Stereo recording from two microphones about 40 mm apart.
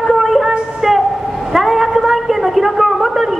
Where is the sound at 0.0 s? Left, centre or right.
Centre.